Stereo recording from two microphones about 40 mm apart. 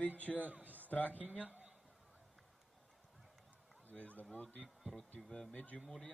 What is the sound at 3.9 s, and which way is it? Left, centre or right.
Speech, left.